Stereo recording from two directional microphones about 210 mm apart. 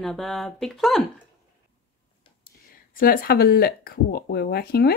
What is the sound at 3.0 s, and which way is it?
Speech, 45° left (ahead or behind).